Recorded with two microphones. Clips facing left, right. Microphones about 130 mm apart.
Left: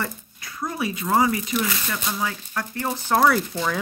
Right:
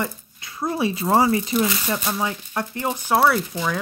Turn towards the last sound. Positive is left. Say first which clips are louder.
# even
turn(degrees=0)  # may be behind; listen again after turning